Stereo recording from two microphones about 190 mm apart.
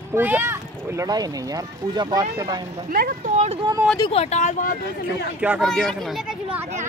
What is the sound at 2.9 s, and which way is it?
Speech, 45° right (ahead or behind).